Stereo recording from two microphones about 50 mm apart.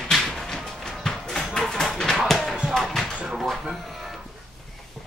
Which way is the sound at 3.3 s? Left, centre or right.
Centre.